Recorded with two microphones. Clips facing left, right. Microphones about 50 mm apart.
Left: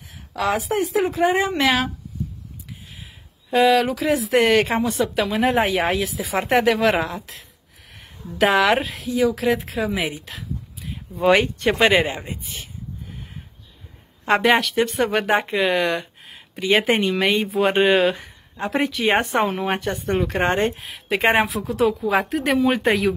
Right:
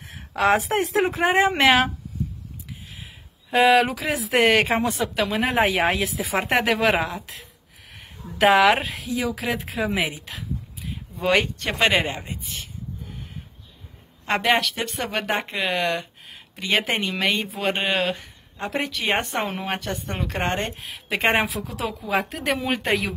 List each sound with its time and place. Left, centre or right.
0.5 s speech: right
1.1 s a woman's voice: right
3.5 s speech: centre
3.9 s speech: centre
14.2 s speech: centre